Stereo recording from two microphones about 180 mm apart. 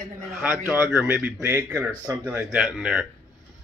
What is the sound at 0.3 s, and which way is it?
Speech, 10° right (ahead or behind).